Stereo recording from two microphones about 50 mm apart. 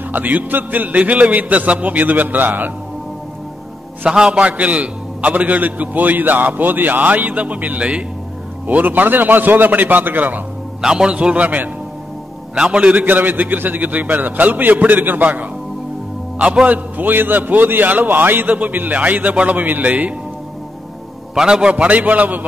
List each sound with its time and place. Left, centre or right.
0.1 s a man's voice: right
4.1 s a man's voice: centre; by 10.4 s right
10.8 s a man's voice: centre
11.1 s a man's voice: right
12.5 s a man's voice: centre
13.0 s a man's voice: right
16.6 s a man's voice: right
21.4 s a man's voice: centre
21.8 s a man's voice: right